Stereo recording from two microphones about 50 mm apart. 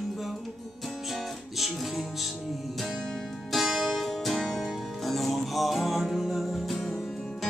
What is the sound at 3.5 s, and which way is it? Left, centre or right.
Music, centre.